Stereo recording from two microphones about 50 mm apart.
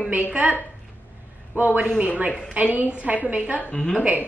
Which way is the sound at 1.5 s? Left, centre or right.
Right.